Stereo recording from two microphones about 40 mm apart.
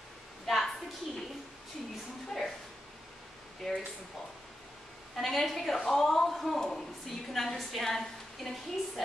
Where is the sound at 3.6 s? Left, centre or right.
Centre.